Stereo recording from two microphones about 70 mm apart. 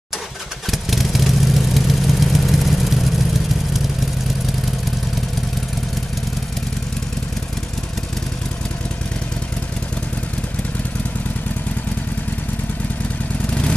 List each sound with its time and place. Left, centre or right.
0.7 s vehicle: centre
13.5 s vehicle: centre